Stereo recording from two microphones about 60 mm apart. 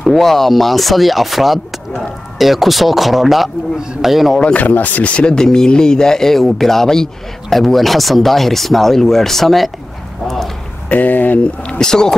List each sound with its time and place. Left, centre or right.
0.0 s speech: centre
4.4 s speech: centre
4.6 s speech: left; by 9.7 s centre
10.2 s a sound: centre
10.9 s speech: left; by 12.2 s centre